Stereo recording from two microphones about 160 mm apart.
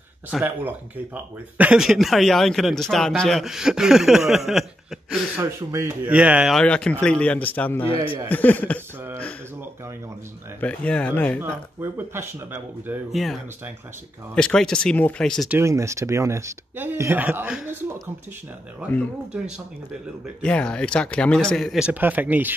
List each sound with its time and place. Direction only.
0.3 s speech: 10° right (ahead or behind)
5.4 s speech: 15° right (ahead or behind); by 7.9 s 10° left (ahead or behind)
7.9 s a man's voice: 35° left (ahead or behind)
8.3 s speech: 10° left (ahead or behind)
10.6 s speech: 5° left (ahead or behind)
11.4 s speech: 15° right (ahead or behind)
13.1 s speech: centre (ahead or behind)
15.4 s speech: 15° right (ahead or behind)
20.4 s speech: 5° left (ahead or behind); by 22.6 s 10° right (ahead or behind)